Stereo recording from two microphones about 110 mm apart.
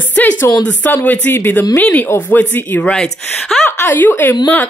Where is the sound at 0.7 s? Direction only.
15° left (ahead or behind).